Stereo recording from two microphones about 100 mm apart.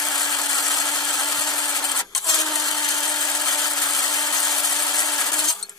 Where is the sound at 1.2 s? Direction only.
35° left (ahead or behind).